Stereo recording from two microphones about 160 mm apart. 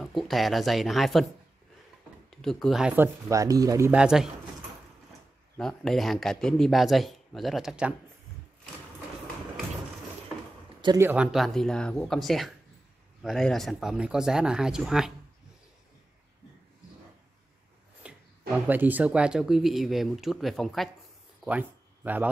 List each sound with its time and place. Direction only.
0.0 s speech: centre (ahead or behind)
2.4 s speech: centre (ahead or behind)
3.0 s speech: 20° right (ahead or behind)
3.9 s speech: 5° right (ahead or behind)
5.6 s speech: 5° left (ahead or behind)
11.0 s speech: 10° right (ahead or behind)
11.3 s speech: centre (ahead or behind)
18.0 s a sound: 5° right (ahead or behind)
18.7 s speech: 10° right (ahead or behind)
21.5 s speech: 10° right (ahead or behind)